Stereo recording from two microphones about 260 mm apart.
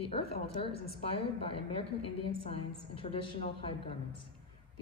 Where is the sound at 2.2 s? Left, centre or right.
Left.